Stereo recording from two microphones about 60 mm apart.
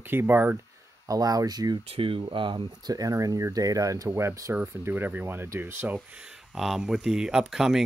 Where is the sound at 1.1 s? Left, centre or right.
Right.